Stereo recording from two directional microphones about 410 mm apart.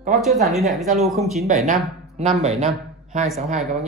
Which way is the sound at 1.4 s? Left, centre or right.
Centre.